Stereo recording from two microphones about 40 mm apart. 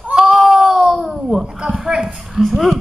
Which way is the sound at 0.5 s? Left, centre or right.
Centre.